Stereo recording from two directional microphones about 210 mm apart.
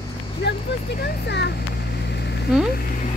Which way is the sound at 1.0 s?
50° left (ahead or behind).